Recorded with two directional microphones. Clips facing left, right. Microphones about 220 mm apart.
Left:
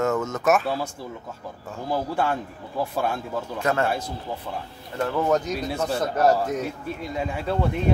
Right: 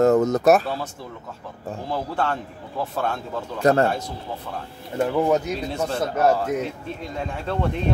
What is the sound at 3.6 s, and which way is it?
Speech, 35° right (ahead or behind).